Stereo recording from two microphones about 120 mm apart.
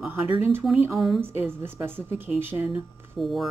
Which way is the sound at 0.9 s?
Centre (ahead or behind).